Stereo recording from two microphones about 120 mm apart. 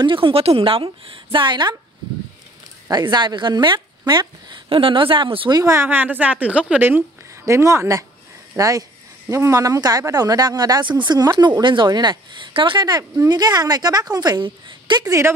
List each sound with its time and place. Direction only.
0.0 s a woman's voice: 45° right (ahead or behind)
2.9 s speech: 35° right (ahead or behind)
5.6 s a woman's voice: 20° right (ahead or behind)
7.4 s speech: 25° right (ahead or behind)